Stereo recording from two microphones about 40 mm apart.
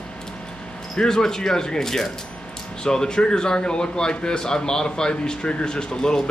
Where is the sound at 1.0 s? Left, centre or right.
Centre.